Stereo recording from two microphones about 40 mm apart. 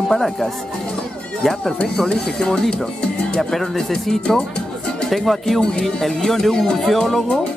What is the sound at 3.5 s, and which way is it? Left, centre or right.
Speech, centre.